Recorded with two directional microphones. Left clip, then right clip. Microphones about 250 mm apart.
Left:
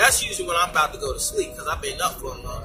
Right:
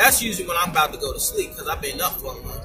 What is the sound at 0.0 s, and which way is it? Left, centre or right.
A man's voice, centre.